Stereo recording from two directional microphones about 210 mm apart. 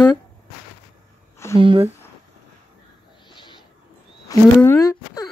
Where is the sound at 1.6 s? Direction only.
25° right (ahead or behind).